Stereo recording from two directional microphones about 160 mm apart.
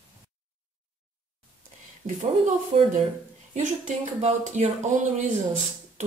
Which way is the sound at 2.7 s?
40° right (ahead or behind).